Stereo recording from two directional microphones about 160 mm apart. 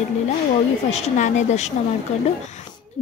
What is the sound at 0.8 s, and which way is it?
Speech, 40° left (ahead or behind).